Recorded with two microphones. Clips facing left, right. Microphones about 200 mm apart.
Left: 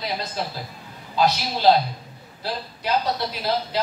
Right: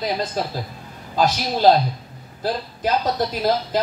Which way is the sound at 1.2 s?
50° right (ahead or behind).